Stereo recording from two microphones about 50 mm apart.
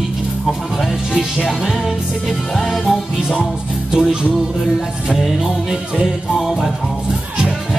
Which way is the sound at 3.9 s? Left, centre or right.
Centre.